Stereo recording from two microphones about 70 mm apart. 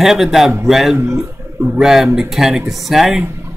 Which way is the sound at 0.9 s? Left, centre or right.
Right.